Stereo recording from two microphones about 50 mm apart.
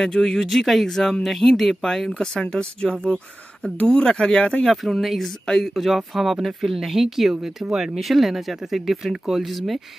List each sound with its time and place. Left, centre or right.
0.0 s speech: centre
4.6 s speech: centre